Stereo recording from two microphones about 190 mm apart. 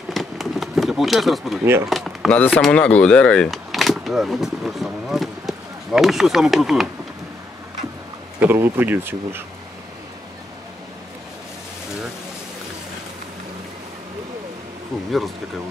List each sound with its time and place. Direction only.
0.1 s bee: centre (ahead or behind)
1.9 s speech: centre (ahead or behind)
8.4 s speech: 10° right (ahead or behind)